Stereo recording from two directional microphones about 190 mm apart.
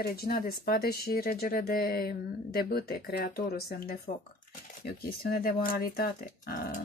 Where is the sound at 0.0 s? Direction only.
55° left (ahead or behind).